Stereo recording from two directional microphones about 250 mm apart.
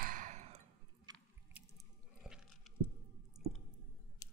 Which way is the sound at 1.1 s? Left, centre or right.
Centre.